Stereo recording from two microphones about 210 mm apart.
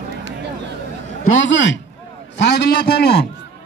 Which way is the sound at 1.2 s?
60° left (ahead or behind).